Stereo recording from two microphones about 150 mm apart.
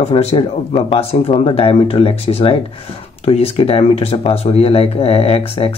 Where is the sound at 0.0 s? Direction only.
40° left (ahead or behind).